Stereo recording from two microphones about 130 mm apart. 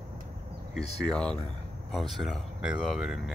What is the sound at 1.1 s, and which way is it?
Speech, 5° left (ahead or behind).